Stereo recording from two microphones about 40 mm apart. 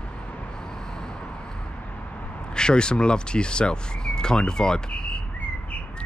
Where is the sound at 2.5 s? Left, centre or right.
Left.